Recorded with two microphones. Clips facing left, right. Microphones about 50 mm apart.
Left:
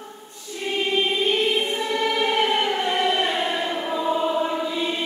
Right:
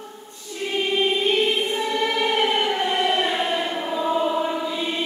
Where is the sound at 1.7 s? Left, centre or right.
Centre.